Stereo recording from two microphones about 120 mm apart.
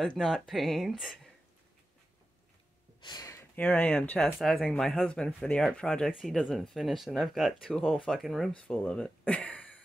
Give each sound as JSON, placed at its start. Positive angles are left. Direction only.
{"t": 0.0, "sound": "speech", "side_deg": 5}
{"t": 3.0, "sound": "a sound", "side_deg": 35}
{"t": 3.5, "sound": "speech", "side_deg": 15}